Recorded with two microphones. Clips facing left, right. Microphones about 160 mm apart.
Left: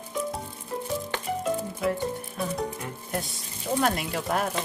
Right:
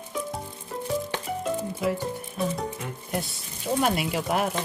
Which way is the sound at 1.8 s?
Centre (ahead or behind).